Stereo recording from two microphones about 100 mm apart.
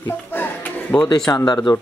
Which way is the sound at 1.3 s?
35° left (ahead or behind).